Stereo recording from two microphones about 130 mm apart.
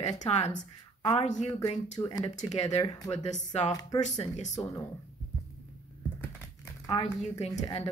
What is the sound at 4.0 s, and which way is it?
Speech, 65° left (ahead or behind).